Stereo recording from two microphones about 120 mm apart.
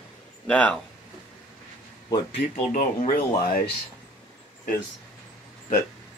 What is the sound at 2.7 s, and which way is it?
Speech, 90° left.